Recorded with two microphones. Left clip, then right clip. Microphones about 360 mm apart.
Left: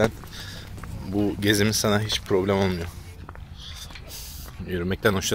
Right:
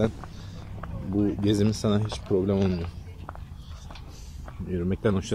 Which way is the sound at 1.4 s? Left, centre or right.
Left.